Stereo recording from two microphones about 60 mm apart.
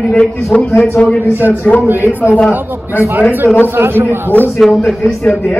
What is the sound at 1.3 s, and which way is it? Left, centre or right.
Speech, right.